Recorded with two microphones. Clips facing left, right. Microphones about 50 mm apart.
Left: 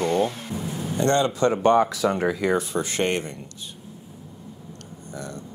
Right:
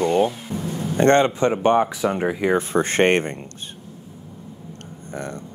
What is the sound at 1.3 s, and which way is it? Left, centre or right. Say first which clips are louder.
Speech: right 1 dB; right.